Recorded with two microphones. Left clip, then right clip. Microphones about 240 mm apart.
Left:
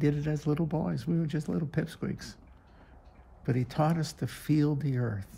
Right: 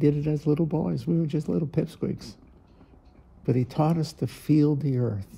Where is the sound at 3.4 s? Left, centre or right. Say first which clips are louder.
Right 4 dB; centre.